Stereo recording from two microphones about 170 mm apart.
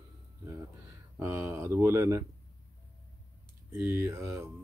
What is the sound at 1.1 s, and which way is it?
Speech, 15° right (ahead or behind).